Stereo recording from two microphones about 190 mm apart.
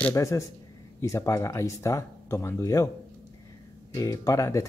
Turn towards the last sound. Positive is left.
turn(degrees=15)  # may be behind; listen again after turning